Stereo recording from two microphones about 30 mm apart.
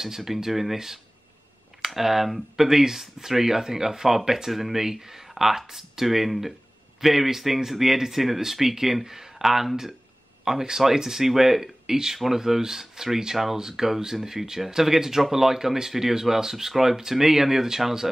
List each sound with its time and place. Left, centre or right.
0.0 s speech: centre
1.9 s speech: centre